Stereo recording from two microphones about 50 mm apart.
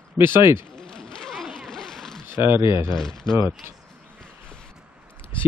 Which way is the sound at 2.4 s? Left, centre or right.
Right.